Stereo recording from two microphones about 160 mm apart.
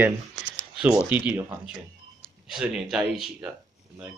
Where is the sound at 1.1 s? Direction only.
10° right (ahead or behind).